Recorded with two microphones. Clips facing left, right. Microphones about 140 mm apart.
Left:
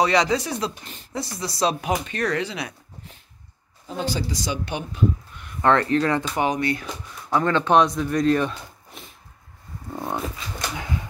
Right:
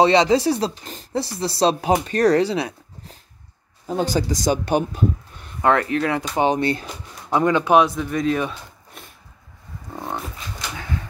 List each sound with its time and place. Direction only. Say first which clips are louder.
0.0 s speech: right 5 dB; 25° right (ahead or behind); by 5.0 s 45° right (ahead or behind)
5.6 s speech: even; 10° right (ahead or behind)
6.3 s speech: right 4 dB; 30° right (ahead or behind)
7.2 s speech: right 3 dB; 15° right (ahead or behind)